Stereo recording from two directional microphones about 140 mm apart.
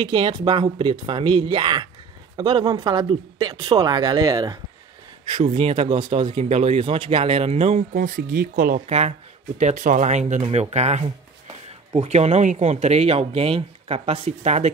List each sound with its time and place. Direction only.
0.0 s a man's voice: 35° right (ahead or behind)
5.2 s speech: 40° right (ahead or behind)
7.9 s speech: 75° right (ahead or behind)
8.8 s speech: 50° right (ahead or behind)
9.6 s speech: 60° right (ahead or behind)